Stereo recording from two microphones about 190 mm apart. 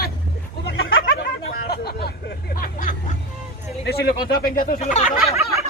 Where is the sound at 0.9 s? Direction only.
90° left.